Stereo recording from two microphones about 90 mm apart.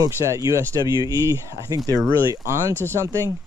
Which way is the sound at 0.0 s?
40° right (ahead or behind).